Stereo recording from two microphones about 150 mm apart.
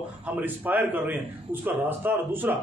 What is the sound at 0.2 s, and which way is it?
A man's voice, 10° right (ahead or behind).